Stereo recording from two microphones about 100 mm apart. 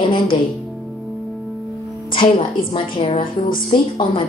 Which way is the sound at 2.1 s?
60° left (ahead or behind).